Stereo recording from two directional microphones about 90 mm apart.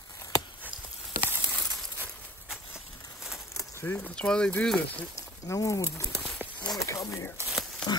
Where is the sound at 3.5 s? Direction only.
30° left (ahead or behind).